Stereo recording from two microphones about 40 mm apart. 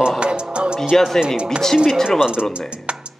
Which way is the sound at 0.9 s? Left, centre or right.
Centre.